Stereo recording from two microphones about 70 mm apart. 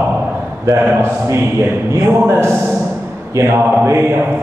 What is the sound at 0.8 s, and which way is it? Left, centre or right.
A man's voice, right.